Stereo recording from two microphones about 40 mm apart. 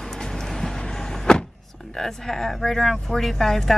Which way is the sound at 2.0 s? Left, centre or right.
Centre.